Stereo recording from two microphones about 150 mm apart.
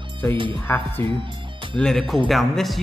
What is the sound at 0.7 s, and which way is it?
Speech, 15° left (ahead or behind).